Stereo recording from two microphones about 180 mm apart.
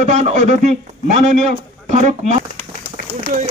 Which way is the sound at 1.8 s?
40° right (ahead or behind).